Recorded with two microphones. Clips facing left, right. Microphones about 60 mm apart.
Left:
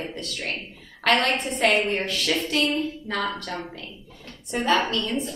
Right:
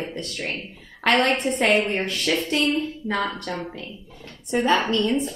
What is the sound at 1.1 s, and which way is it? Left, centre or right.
Speech, centre.